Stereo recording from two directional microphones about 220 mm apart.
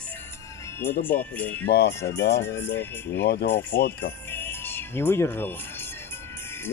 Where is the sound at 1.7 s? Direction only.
45° left (ahead or behind).